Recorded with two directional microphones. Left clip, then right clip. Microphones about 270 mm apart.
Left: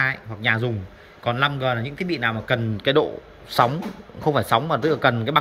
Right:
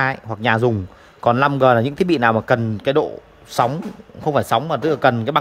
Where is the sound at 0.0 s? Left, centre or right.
Centre.